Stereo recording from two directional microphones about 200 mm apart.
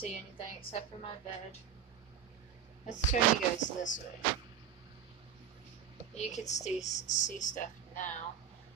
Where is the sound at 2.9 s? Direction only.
40° left (ahead or behind).